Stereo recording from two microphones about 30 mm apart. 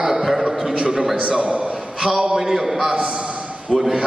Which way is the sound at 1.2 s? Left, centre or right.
Right.